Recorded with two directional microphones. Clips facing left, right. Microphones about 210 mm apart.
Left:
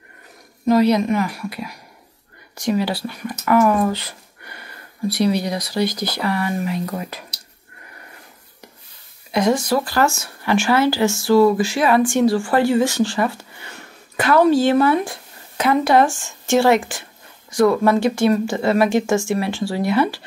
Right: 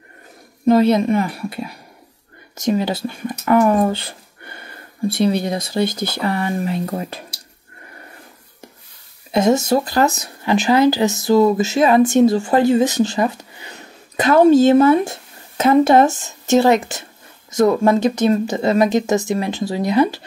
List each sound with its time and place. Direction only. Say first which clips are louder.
0.7 s speech: right 2 dB; 25° right (ahead or behind)
9.3 s speech: right 3 dB; 25° right (ahead or behind)